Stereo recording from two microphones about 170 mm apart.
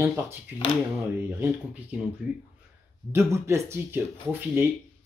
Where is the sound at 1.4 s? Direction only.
10° right (ahead or behind).